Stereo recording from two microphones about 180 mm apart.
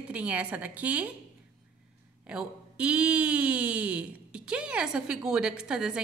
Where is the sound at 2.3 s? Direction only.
5° right (ahead or behind).